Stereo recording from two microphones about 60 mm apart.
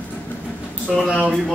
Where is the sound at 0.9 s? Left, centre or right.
Centre.